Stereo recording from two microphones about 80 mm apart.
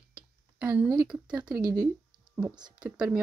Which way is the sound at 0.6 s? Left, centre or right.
Centre.